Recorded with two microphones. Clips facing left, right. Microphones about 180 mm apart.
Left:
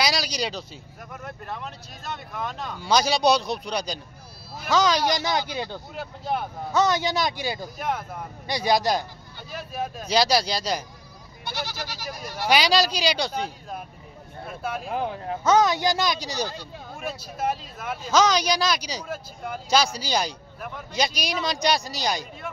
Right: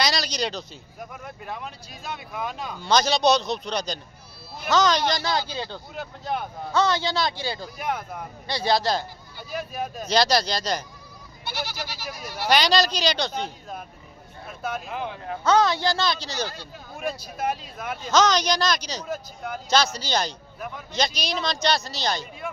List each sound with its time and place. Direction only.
0.0 s speech: 10° left (ahead or behind)
2.8 s speech: 10° left (ahead or behind)
5.9 s speech: 5° left (ahead or behind)
6.7 s speech: 20° left (ahead or behind)
7.8 s speech: 5° left (ahead or behind)
8.5 s speech: 15° left (ahead or behind)
9.7 s speech: 5° left (ahead or behind)
11.6 s speech: 10° right (ahead or behind)
12.4 s speech: 5° left (ahead or behind)
14.9 s speech: 40° left (ahead or behind)
15.2 s speech: 20° left (ahead or behind)
17.0 s speech: 5° left (ahead or behind)